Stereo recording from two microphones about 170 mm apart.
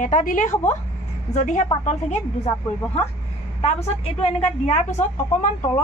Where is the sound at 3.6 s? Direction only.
35° left (ahead or behind).